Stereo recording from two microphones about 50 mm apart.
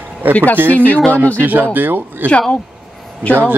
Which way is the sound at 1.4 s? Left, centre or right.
Right.